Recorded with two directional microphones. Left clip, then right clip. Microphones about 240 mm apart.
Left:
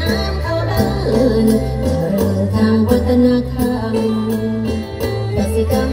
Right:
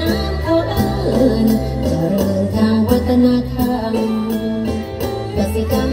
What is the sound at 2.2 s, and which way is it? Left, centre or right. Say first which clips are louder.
Music: even; right.